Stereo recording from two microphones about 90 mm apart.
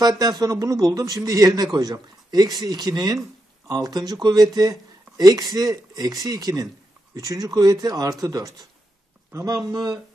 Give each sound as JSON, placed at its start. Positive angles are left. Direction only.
{"t": 0.0, "sound": "a man's voice", "side_deg": -45}